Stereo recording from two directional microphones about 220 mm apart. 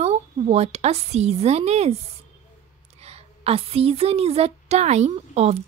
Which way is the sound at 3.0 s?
25° right (ahead or behind).